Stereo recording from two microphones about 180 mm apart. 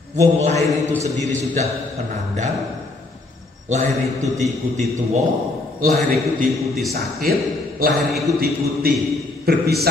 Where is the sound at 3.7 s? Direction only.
40° right (ahead or behind).